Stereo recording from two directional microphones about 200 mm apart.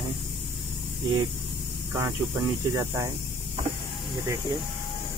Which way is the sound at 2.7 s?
15° right (ahead or behind).